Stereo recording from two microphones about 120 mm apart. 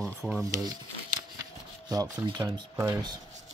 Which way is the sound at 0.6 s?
35° right (ahead or behind).